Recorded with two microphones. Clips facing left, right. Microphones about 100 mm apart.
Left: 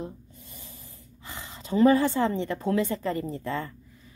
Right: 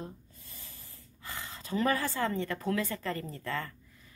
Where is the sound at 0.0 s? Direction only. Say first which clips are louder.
Left 6 dB; 20° left (ahead or behind).